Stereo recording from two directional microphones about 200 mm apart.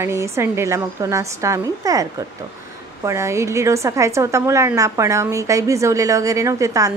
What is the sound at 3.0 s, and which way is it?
A woman's voice, 15° right (ahead or behind).